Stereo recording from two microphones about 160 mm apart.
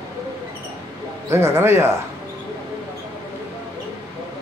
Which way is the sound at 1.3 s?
15° right (ahead or behind).